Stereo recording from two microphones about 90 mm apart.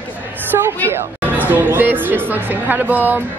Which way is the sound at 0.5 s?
35° right (ahead or behind).